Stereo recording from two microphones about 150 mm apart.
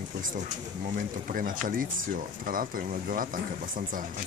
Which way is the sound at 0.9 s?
65° right (ahead or behind).